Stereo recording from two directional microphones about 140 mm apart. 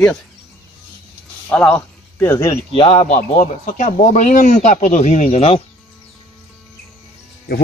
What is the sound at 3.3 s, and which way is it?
Speech, 75° left (ahead or behind).